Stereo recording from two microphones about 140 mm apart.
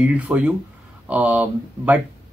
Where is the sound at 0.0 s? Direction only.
10° right (ahead or behind).